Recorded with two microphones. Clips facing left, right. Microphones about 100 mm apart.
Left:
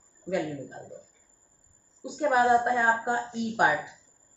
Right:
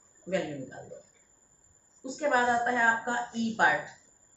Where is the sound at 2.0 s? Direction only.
15° left (ahead or behind).